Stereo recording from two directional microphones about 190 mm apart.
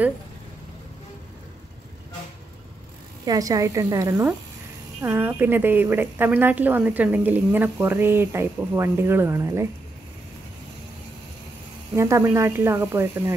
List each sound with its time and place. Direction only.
3.3 s a woman's voice: 20° right (ahead or behind)
11.9 s a woman's voice: 15° right (ahead or behind)